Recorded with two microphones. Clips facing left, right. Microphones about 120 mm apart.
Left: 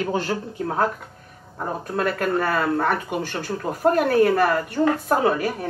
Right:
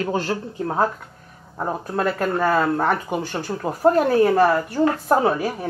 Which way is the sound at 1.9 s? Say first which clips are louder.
Even; 25° right (ahead or behind).